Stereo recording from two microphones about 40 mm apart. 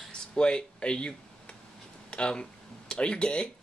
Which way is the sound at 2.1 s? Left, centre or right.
Left.